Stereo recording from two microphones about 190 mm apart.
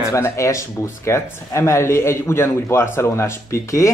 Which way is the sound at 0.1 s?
15° left (ahead or behind).